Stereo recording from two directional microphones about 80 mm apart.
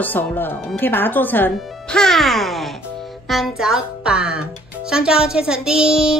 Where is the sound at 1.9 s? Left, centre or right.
Centre.